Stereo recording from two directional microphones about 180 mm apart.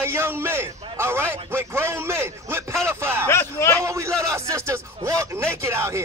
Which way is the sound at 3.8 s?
15° right (ahead or behind).